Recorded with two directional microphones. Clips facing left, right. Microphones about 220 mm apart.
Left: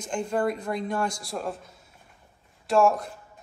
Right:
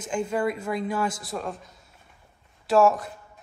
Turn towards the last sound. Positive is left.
turn(degrees=0)  # may be behind; listen again after turning